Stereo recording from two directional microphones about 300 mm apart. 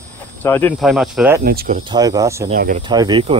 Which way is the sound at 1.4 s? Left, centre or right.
Right.